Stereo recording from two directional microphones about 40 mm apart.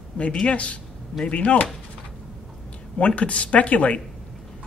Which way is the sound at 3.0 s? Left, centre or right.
Left.